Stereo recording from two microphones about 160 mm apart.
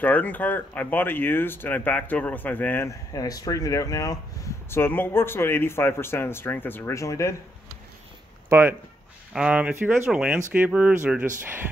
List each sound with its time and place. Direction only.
0.0 s speech: 10° left (ahead or behind)
3.1 s speech: 25° left (ahead or behind)
8.5 s speech: 15° right (ahead or behind)